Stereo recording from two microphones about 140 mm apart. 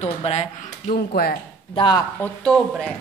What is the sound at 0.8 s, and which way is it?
Speech, 90° left.